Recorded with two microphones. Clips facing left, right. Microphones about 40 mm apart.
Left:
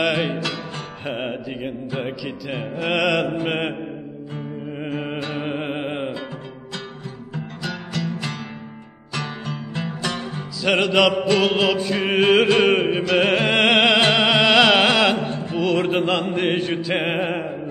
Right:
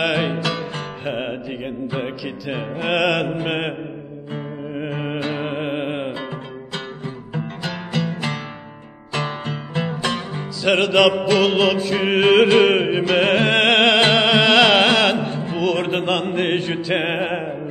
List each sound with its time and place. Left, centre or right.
0.0 s music: centre
0.4 s music: right
1.0 s music: centre
5.3 s music: centre
7.3 s music: right
9.5 s music: centre
10.6 s music: centre